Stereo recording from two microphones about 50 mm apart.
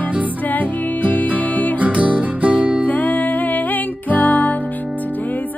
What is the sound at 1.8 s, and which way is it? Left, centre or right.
Music, right.